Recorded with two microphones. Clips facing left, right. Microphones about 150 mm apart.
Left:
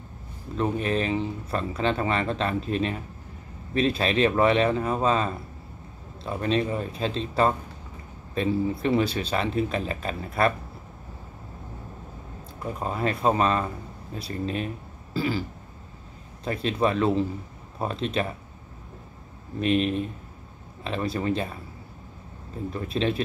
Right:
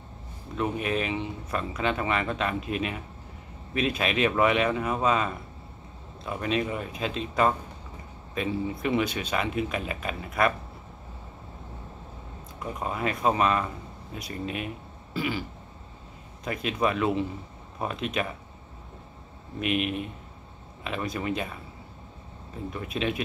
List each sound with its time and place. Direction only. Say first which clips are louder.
0.6 s speech: left 2 dB; 35° left (ahead or behind)
12.7 s speech: left 2 dB; 35° left (ahead or behind)
16.4 s speech: left 2 dB; 30° left (ahead or behind)
19.6 s speech: left 4 dB; 35° left (ahead or behind)
22.7 s speech: left 3 dB; 35° left (ahead or behind)